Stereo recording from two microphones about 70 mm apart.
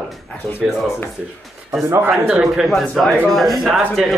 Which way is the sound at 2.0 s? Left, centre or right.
Centre.